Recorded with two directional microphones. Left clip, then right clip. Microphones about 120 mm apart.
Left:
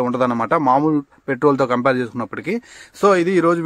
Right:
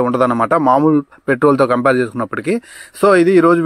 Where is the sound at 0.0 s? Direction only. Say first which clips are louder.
Right 5 dB; 25° right (ahead or behind).